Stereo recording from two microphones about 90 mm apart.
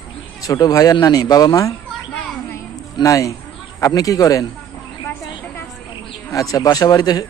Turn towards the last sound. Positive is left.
turn(degrees=45)  # may be behind; listen again after turning